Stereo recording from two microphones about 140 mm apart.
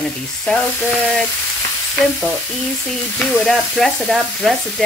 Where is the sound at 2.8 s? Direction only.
5° left (ahead or behind).